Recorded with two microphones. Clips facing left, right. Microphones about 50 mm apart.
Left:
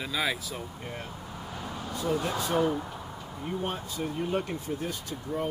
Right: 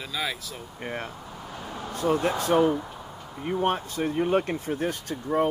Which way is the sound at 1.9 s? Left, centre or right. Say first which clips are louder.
Right 5 dB; right.